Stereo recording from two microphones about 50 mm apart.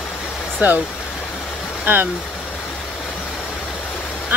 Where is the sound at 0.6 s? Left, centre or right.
Right.